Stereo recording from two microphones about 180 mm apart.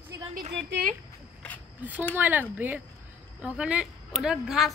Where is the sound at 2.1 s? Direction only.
10° right (ahead or behind).